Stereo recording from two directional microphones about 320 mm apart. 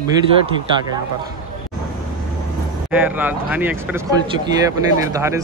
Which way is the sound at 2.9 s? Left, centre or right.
Centre.